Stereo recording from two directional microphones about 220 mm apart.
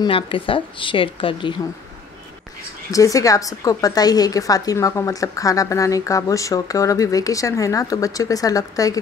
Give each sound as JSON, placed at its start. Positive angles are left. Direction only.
{"t": 0.0, "sound": "speech", "side_deg": 25}
{"t": 2.9, "sound": "a woman's voice", "side_deg": 15}